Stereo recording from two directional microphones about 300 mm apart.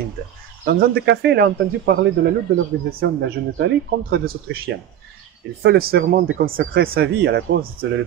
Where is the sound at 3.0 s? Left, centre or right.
Right.